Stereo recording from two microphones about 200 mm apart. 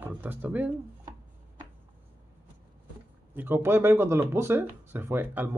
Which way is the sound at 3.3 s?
10° right (ahead or behind).